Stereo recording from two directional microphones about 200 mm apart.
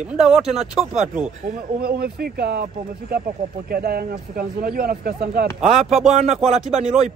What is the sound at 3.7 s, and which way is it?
Speech, 50° right (ahead or behind).